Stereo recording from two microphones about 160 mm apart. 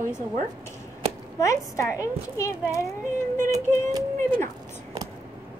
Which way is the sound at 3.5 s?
25° right (ahead or behind).